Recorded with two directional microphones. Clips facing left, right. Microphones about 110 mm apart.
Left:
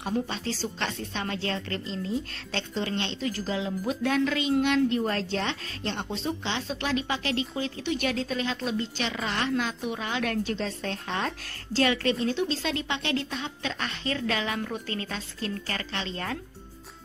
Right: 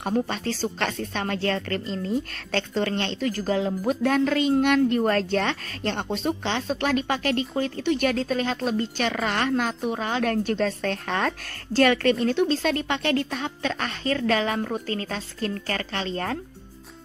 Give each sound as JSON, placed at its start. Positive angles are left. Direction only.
{"t": 0.0, "sound": "a woman's voice", "side_deg": -50}
{"t": 10.8, "sound": "a woman's voice", "side_deg": -65}